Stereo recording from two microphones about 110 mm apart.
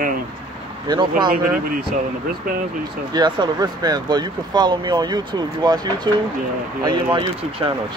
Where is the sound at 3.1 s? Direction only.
40° right (ahead or behind).